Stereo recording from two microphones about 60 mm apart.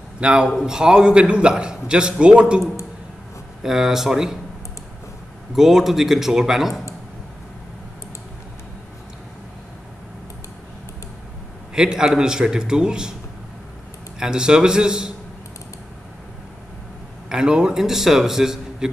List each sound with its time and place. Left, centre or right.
0.2 s a man's voice: centre
3.6 s a man's voice: centre
5.5 s a man's voice: centre
11.7 s a man's voice: centre
14.2 s a man's voice: centre
17.3 s a man's voice: centre